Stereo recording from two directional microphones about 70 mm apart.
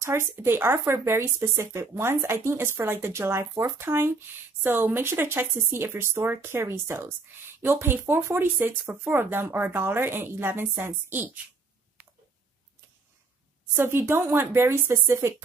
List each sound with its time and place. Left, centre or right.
0.4 s speech: right
13.7 s speech: right